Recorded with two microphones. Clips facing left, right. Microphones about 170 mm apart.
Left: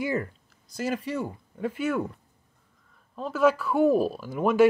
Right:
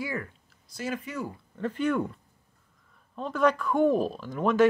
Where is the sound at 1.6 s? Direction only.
10° left (ahead or behind).